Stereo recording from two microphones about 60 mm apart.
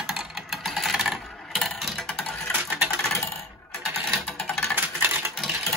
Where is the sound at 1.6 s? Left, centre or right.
Centre.